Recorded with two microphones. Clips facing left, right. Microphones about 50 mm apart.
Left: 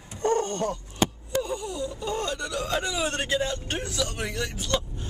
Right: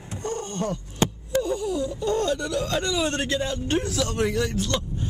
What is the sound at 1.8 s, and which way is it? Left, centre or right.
Speech, centre.